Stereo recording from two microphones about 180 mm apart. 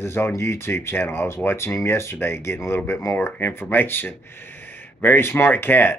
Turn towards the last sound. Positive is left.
turn(degrees=10)  # may be behind; listen again after turning